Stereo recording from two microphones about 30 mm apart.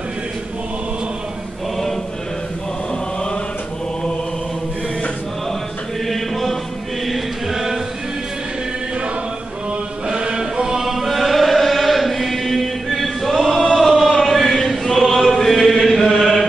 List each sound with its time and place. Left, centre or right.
6.0 s chant: centre
7.5 s chant: centre
10.1 s chant: right
10.5 s music: centre
10.9 s chant: centre
14.0 s chant: centre
14.7 s choir: centre
15.9 s chant: centre